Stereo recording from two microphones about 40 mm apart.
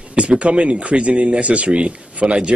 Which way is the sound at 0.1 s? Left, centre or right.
Right.